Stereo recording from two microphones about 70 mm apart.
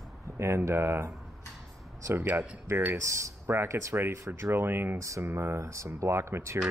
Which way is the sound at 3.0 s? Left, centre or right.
Right.